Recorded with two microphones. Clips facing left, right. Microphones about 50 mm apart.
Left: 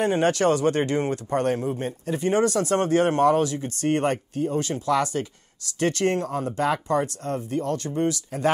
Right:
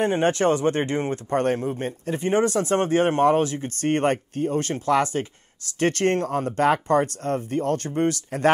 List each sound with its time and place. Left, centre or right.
0.0 s speech: right
1.3 s speech: right